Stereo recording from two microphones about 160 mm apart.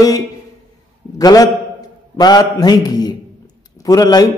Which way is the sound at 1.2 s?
25° left (ahead or behind).